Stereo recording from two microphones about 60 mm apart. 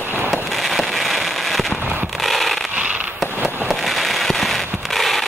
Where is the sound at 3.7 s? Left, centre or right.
Centre.